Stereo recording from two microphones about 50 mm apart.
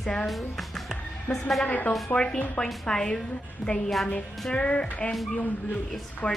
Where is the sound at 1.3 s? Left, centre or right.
Left.